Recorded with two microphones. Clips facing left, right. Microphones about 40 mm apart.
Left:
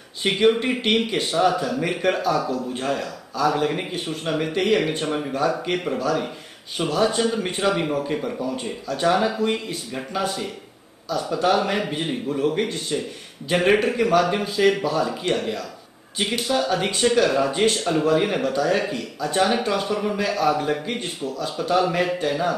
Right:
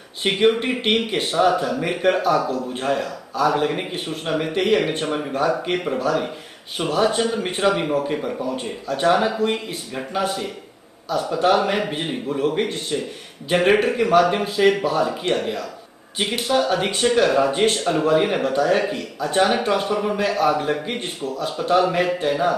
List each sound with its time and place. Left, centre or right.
0.2 s a man's voice: centre
1.3 s a man's voice: centre